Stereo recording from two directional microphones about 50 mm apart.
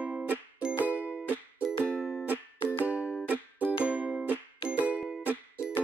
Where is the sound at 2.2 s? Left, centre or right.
Right.